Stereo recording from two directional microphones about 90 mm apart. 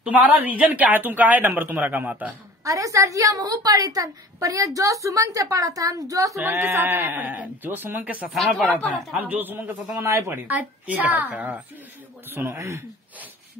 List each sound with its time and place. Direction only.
0.0 s a woman's voice: 15° right (ahead or behind)
2.6 s a woman's voice: 40° right (ahead or behind)
6.4 s a woman's voice: 25° right (ahead or behind)
8.6 s speech: 15° left (ahead or behind)
9.3 s a woman's voice: 20° right (ahead or behind)
12.3 s a woman's voice: 30° right (ahead or behind)